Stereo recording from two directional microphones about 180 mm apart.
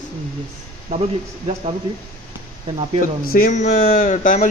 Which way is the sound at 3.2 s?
55° left (ahead or behind).